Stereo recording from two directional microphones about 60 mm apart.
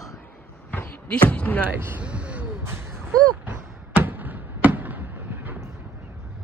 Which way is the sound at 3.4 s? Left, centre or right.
Right.